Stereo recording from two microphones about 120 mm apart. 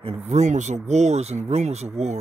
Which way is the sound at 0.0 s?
60° right (ahead or behind).